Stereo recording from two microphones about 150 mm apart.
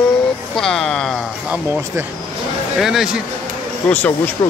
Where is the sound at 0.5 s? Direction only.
5° left (ahead or behind).